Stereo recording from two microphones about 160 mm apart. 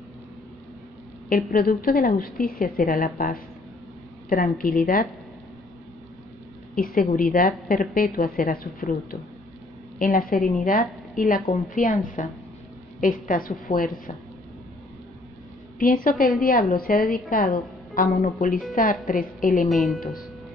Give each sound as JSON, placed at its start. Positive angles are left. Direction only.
{"t": 1.3, "sound": "a woman's voice", "side_deg": 65}
{"t": 6.7, "sound": "a woman's voice", "side_deg": 65}
{"t": 15.8, "sound": "a woman's voice", "side_deg": 60}
{"t": 19.7, "sound": "speech", "side_deg": 0}
{"t": 20.0, "sound": "a woman's voice", "side_deg": 65}